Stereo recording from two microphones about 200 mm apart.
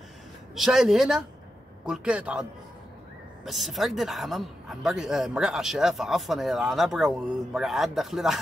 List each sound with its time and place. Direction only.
0.6 s speech: centre (ahead or behind)
3.4 s speech: centre (ahead or behind)